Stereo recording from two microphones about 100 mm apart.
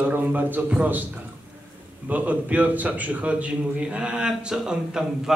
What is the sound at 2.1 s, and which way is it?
A man's voice, 15° right (ahead or behind).